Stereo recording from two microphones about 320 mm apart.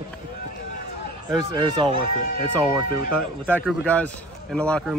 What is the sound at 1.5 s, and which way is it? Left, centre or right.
Speech, centre.